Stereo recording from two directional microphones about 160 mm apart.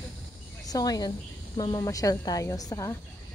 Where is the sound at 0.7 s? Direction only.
25° left (ahead or behind).